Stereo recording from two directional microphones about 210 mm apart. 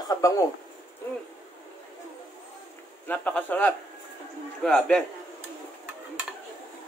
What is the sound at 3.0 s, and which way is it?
A man's voice, 5° left (ahead or behind).